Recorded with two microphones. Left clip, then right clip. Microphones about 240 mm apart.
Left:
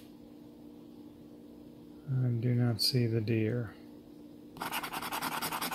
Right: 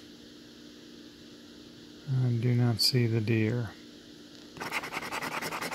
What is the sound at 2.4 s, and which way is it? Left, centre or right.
Speech, right.